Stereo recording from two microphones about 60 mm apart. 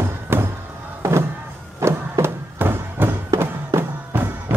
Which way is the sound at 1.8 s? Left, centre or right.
Right.